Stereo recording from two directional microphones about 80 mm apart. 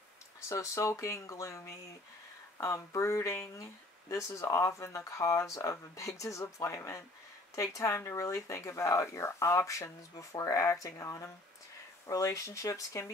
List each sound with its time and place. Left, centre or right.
0.5 s speech: left